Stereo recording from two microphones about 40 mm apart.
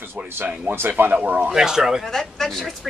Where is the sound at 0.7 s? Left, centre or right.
Right.